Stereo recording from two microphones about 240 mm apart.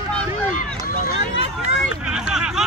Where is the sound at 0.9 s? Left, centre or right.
Left.